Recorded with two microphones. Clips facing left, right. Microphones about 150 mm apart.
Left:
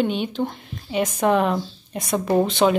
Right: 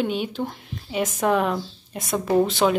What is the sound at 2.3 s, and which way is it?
Speech, 15° left (ahead or behind).